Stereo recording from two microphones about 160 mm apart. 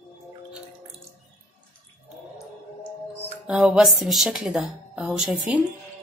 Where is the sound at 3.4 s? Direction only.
5° right (ahead or behind).